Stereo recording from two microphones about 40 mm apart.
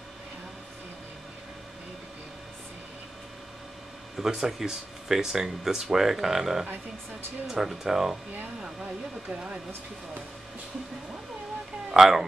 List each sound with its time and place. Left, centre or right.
4.2 s speech: centre
9.3 s speech: right
11.9 s speech: centre